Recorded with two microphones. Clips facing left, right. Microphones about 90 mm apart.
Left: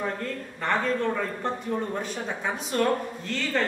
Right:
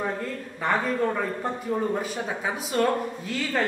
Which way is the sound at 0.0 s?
10° right (ahead or behind).